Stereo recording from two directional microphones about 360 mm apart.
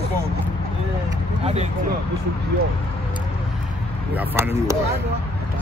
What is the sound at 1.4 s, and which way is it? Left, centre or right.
Speech, centre.